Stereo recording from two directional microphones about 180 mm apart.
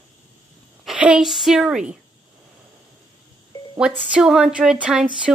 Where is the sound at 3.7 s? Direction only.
5° right (ahead or behind).